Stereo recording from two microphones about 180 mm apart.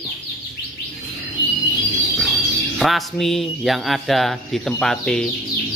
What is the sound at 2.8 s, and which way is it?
Speech, centre (ahead or behind).